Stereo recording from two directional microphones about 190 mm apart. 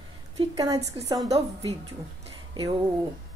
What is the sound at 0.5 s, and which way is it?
A woman's voice, 20° right (ahead or behind).